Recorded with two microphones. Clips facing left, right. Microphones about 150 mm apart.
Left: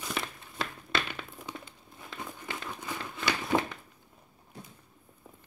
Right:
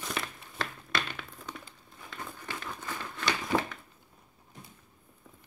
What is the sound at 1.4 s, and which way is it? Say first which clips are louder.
Crumpling: left 2 dB; 15° left (ahead or behind).